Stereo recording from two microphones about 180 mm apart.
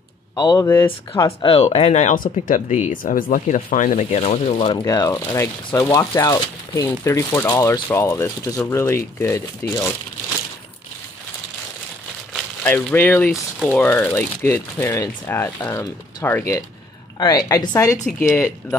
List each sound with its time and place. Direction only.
0.4 s speech: 20° left (ahead or behind)
1.4 s speech: 30° left (ahead or behind)
4.8 s speech: 20° left (ahead or behind)
12.6 s speech: 10° left (ahead or behind)